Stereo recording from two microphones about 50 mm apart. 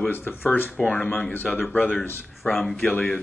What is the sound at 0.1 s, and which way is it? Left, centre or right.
Speech, left.